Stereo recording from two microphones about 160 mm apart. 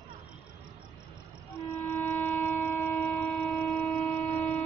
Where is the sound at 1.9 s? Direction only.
10° left (ahead or behind).